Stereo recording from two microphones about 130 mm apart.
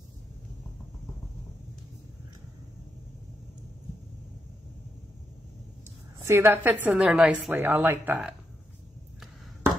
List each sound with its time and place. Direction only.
6.1 s a woman's voice: 20° right (ahead or behind)